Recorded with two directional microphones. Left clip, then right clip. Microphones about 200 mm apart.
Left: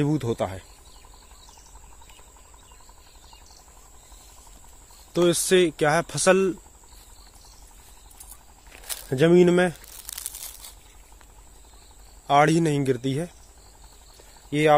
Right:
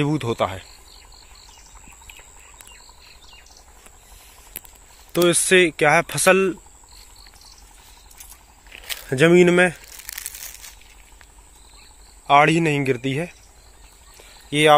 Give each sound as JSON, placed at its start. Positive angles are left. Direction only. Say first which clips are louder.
{"t": 0.0, "sound": "speech", "louder": "right 4 dB", "side_deg": 5}
{"t": 5.1, "sound": "speech", "louder": "right 4 dB", "side_deg": 0}
{"t": 8.6, "sound": "crumpling", "louder": "right 5 dB", "side_deg": -10}
{"t": 12.3, "sound": "speech", "louder": "right 4 dB", "side_deg": 10}
{"t": 14.5, "sound": "speech", "louder": "right 5 dB", "side_deg": 0}